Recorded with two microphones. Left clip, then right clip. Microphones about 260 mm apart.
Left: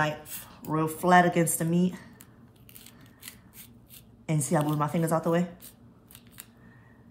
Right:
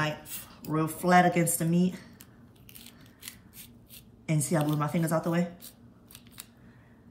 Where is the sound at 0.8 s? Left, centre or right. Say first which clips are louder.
Left 2 dB; left.